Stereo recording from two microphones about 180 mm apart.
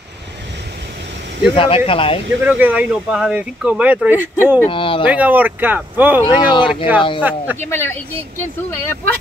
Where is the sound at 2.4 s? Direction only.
10° right (ahead or behind).